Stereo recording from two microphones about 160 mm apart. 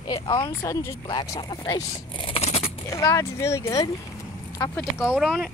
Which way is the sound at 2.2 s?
40° left (ahead or behind).